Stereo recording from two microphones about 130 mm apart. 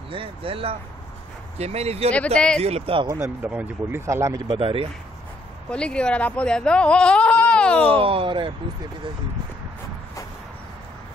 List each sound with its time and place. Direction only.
0.1 s speech: 45° right (ahead or behind)
2.1 s speech: 5° left (ahead or behind)
2.6 s speech: 55° right (ahead or behind)
3.4 s speech: 10° right (ahead or behind); by 4.8 s 45° right (ahead or behind)
5.7 s speech: 10° left (ahead or behind)
8.0 s speech: 45° right (ahead or behind)